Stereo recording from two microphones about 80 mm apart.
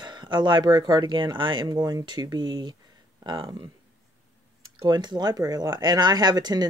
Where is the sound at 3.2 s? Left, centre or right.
Right.